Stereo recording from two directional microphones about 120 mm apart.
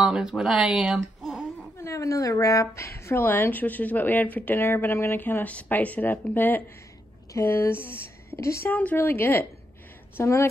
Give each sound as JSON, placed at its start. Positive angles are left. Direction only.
{"t": 0.0, "sound": "speech", "side_deg": -5}
{"t": 1.8, "sound": "a woman's voice", "side_deg": 25}